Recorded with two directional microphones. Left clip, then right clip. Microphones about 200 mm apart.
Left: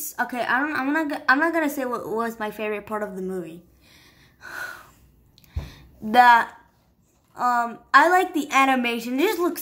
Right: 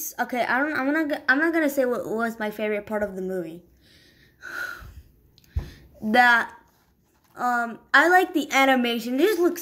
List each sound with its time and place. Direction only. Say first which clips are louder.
0.0 s a woman's voice: even; centre (ahead or behind)
5.5 s a sound: left 1 dB; centre (ahead or behind)
7.3 s a woman's voice: left 3 dB; 5° right (ahead or behind)